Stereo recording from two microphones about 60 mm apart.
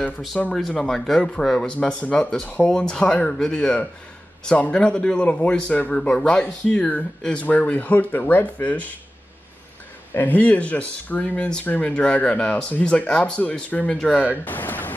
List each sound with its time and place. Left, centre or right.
0.5 s a man's voice: centre; by 2.7 s left
2.7 s a man's voice: centre
10.1 s a man's voice: left
14.4 s a sound: left